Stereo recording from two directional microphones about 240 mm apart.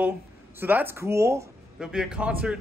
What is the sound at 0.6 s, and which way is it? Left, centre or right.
Speech, centre.